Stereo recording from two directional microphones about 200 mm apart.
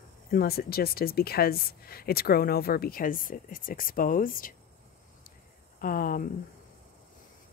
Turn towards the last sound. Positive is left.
turn(degrees=45)  # may be behind; listen again after turning